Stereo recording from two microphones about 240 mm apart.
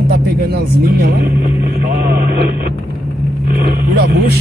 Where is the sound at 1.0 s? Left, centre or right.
Right.